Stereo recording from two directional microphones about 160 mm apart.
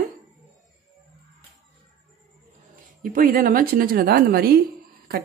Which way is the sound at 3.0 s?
60° right (ahead or behind).